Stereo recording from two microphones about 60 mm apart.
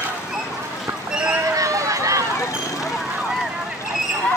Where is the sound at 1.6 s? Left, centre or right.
Right.